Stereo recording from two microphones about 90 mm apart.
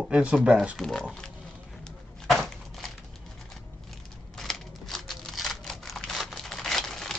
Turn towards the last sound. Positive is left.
turn(degrees=5)  # may be behind; listen again after turning